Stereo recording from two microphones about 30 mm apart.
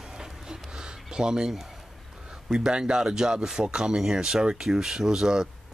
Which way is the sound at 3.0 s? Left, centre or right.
Centre.